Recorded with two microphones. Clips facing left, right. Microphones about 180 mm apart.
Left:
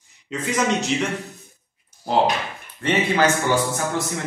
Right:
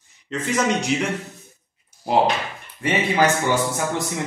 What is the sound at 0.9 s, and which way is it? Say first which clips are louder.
Speech: even; 5° right (ahead or behind).